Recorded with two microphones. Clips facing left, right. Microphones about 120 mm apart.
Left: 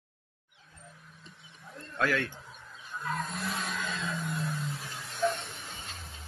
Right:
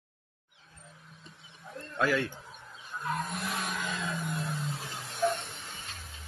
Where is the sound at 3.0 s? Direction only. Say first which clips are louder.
Right 1 dB; 15° right (ahead or behind).